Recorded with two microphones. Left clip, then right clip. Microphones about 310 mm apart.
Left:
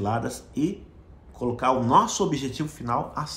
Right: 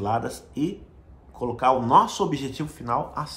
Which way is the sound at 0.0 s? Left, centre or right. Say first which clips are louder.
Right 2 dB; centre.